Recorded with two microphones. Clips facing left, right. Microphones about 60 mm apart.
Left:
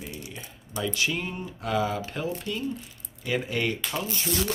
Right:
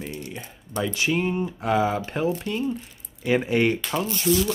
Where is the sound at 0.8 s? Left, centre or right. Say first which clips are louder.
Right 5 dB; right.